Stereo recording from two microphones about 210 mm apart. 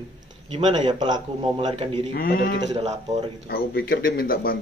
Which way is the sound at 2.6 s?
30° right (ahead or behind).